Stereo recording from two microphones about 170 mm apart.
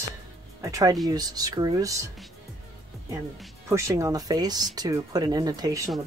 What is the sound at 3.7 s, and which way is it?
Speech, 15° right (ahead or behind).